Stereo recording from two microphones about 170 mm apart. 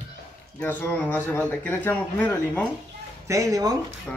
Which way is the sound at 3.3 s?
20° right (ahead or behind).